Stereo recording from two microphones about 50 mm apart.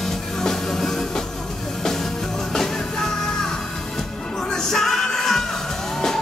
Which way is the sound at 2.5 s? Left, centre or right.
Centre.